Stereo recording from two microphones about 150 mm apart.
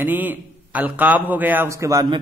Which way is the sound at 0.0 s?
10° right (ahead or behind).